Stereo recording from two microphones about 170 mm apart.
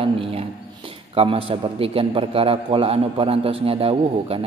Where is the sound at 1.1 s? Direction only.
35° right (ahead or behind).